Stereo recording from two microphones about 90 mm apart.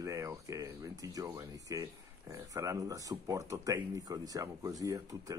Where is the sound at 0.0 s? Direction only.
35° right (ahead or behind).